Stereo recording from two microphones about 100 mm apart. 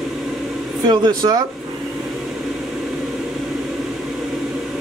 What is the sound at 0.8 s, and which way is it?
Speech, 45° right (ahead or behind).